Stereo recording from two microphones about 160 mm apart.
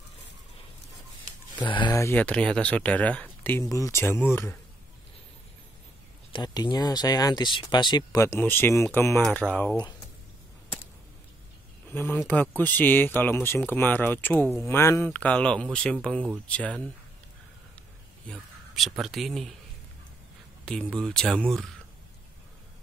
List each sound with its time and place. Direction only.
1.6 s speech: 30° left (ahead or behind)
6.3 s speech: 25° left (ahead or behind); by 9.8 s 10° left (ahead or behind)
11.9 s speech: 15° left (ahead or behind)
18.3 s speech: centre (ahead or behind)
20.6 s speech: 5° left (ahead or behind)